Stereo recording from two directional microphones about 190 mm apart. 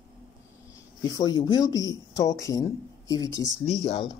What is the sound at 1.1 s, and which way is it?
Speech, 20° left (ahead or behind).